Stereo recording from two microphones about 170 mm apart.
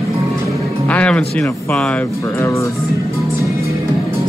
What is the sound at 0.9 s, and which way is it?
Speech, 5° left (ahead or behind).